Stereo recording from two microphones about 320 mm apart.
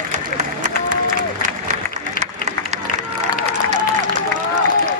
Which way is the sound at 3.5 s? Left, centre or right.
Right.